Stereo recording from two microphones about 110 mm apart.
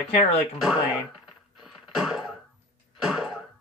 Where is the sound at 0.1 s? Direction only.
65° left (ahead or behind).